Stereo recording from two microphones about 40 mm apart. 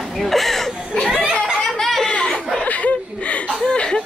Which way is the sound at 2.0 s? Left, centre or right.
Left.